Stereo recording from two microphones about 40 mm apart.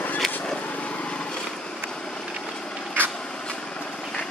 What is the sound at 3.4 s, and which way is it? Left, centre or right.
Vehicle, left.